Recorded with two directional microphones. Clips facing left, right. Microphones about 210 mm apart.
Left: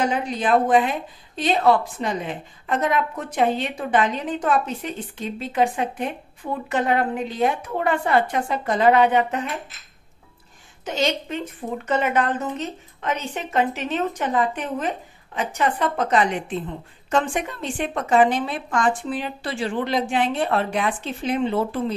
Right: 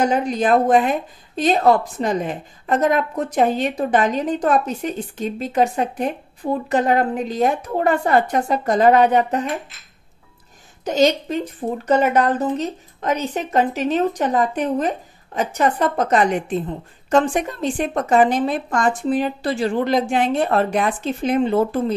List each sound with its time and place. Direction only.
0.0 s a woman's voice: 45° right (ahead or behind)
10.9 s a woman's voice: 40° right (ahead or behind)